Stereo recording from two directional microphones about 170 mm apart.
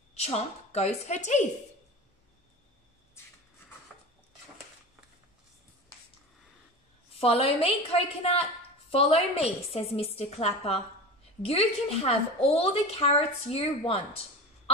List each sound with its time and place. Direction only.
0.2 s a woman's voice: 40° left (ahead or behind)
7.2 s a woman's voice: 35° left (ahead or behind)